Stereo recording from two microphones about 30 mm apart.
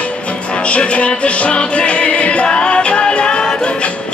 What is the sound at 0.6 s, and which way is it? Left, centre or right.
Music, left.